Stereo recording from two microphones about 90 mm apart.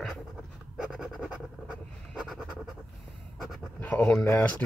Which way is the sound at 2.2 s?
5° right (ahead or behind).